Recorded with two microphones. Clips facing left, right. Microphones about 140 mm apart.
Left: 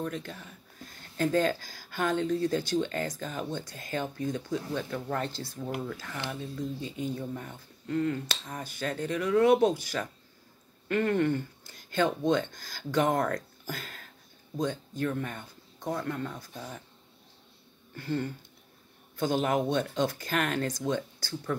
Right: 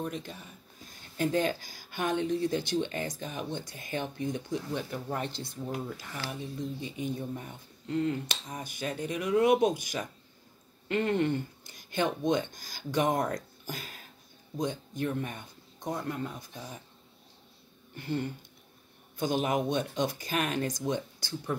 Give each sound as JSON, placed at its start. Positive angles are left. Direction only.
{"t": 0.0, "sound": "speech", "side_deg": -15}
{"t": 17.9, "sound": "speech", "side_deg": -20}